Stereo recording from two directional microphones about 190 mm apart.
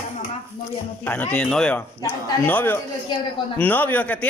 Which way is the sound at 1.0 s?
10° left (ahead or behind).